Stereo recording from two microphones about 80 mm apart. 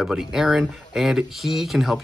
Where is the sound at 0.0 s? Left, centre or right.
Centre.